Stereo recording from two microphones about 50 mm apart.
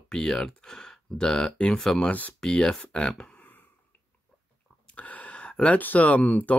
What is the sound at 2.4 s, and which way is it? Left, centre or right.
Speech, centre.